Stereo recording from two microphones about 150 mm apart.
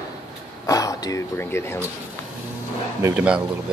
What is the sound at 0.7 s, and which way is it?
Speech, 20° left (ahead or behind).